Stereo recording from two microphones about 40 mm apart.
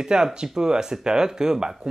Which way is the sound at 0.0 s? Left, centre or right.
Centre.